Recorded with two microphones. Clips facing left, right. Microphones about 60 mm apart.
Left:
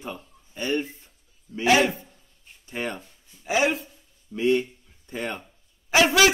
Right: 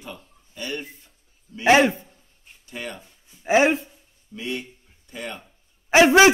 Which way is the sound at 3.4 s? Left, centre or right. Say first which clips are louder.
Right 5 dB; right.